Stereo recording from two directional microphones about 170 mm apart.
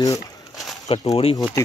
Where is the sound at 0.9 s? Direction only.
35° left (ahead or behind).